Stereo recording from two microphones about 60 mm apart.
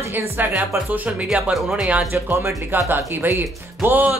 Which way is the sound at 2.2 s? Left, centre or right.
Right.